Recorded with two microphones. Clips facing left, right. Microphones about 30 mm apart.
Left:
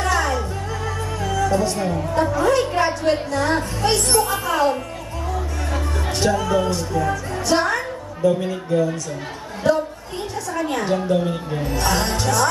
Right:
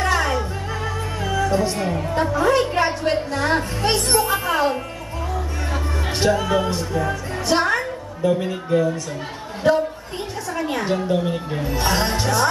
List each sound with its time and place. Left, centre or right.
0.0 s music: centre
1.2 s a woman's voice: right
6.1 s music: centre
10.5 s speech: centre